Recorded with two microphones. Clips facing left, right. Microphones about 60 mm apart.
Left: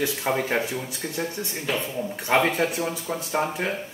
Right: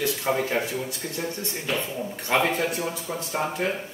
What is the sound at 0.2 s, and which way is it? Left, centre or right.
A man's voice, centre.